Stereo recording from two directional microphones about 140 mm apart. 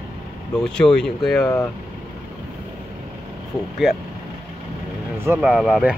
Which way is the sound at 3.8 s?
Centre (ahead or behind).